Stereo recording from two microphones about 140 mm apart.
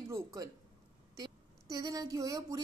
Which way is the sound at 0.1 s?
25° right (ahead or behind).